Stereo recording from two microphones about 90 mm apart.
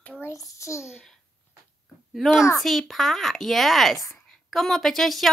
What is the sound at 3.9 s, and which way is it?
Speech, 35° left (ahead or behind).